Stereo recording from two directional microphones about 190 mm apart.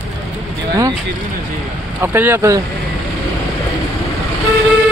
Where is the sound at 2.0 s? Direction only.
10° right (ahead or behind).